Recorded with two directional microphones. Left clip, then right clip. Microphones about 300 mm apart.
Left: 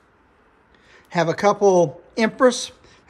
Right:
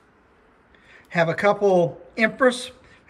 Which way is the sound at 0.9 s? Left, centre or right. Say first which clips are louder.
Even; centre.